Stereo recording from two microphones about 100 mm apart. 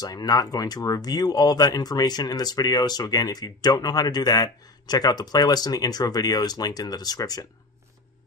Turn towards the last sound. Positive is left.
turn(degrees=40)  # may be behind; listen again after turning